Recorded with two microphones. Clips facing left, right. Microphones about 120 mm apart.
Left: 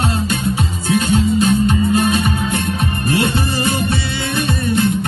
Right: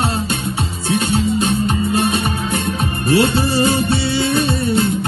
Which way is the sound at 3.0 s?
30° right (ahead or behind).